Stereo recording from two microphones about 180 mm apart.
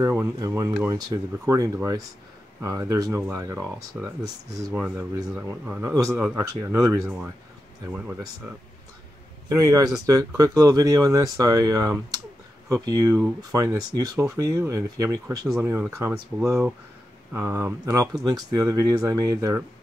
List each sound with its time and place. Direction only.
0.0 s speech: 15° right (ahead or behind)
6.3 s speech: 15° right (ahead or behind)
9.5 s speech: 20° right (ahead or behind)